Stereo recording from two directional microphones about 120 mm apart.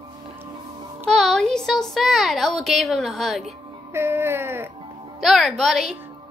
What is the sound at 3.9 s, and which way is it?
Speech, 20° right (ahead or behind).